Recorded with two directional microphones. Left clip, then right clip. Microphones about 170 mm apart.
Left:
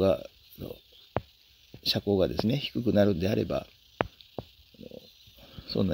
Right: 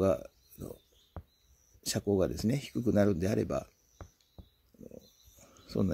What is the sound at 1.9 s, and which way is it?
Speech, 20° left (ahead or behind).